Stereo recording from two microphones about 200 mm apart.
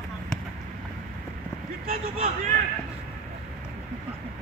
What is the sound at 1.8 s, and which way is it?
Speech, 45° right (ahead or behind).